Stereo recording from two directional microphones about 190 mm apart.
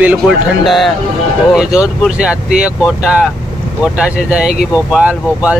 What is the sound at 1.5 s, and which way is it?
Speech, 5° right (ahead or behind).